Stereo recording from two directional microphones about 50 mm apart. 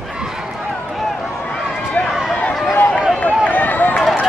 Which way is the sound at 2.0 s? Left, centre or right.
Left.